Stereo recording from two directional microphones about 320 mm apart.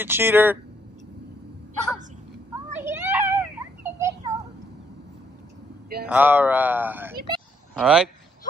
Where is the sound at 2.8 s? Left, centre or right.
Centre.